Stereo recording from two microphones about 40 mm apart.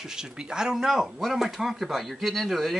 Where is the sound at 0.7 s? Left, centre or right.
Centre.